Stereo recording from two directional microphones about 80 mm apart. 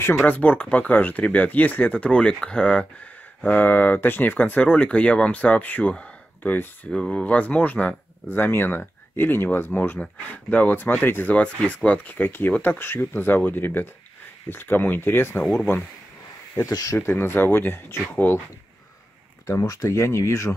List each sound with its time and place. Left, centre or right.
0.0 s speech: left
6.9 s speech: centre; by 15.4 s left
16.7 s speech: left
17.1 s speech: left
19.4 s speech: left